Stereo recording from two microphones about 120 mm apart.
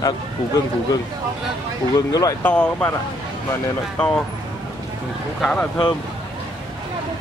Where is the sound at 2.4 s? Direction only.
10° left (ahead or behind).